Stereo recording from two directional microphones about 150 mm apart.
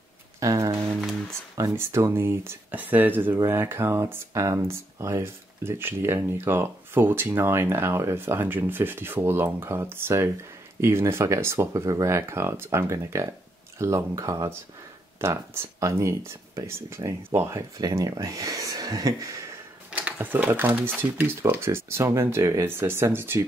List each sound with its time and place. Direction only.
0.4 s speech: 20° right (ahead or behind)
19.9 s speech: 10° right (ahead or behind)